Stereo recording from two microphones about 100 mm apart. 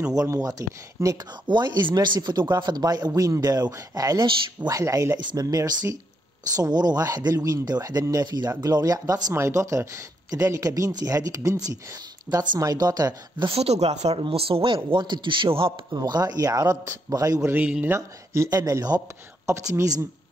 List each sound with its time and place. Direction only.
0.1 s speech: 35° right (ahead or behind)
1.5 s speech: 50° right (ahead or behind)
13.6 s speech: 90° right
14.2 s a man's voice: 65° right (ahead or behind)
14.9 s a man's voice: 50° right (ahead or behind)
16.0 s speech: 40° right (ahead or behind)
17.5 s a man's voice: 15° right (ahead or behind)
17.9 s speech: 25° right (ahead or behind)
18.5 s speech: 40° right (ahead or behind)